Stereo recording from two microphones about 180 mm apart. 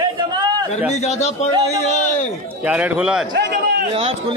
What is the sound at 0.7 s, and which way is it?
Speech, 40° left (ahead or behind).